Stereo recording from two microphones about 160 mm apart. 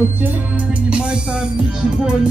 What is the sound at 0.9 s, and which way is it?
Music, 5° right (ahead or behind).